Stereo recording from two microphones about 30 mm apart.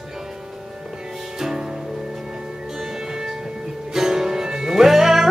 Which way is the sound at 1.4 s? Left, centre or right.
Centre.